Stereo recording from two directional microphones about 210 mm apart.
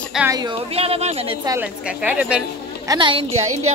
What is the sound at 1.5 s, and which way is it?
Speech, 10° right (ahead or behind).